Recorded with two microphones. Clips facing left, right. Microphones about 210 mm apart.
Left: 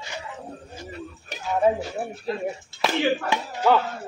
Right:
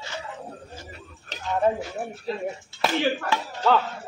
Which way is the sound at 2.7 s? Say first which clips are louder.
Right 1 dB; 45° left (ahead or behind).